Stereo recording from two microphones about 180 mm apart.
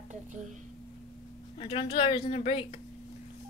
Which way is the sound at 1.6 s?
30° left (ahead or behind).